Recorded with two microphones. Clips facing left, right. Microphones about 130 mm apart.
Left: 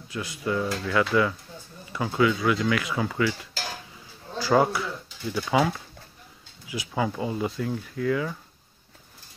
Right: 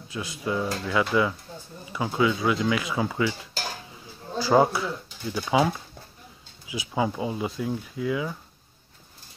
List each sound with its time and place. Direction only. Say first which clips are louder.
0.1 s speech: left 1 dB; 20° right (ahead or behind)
4.4 s speech: right 1 dB; 20° right (ahead or behind)
6.9 s speech: right 1 dB; 15° right (ahead or behind)